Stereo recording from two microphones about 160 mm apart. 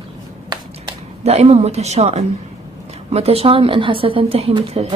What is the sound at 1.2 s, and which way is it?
A woman's voice, 40° right (ahead or behind).